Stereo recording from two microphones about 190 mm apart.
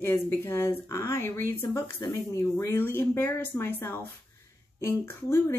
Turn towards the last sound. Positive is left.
turn(degrees=15)  # may be behind; listen again after turning